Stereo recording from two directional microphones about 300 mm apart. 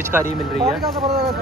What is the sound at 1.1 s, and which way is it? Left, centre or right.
Speech, right.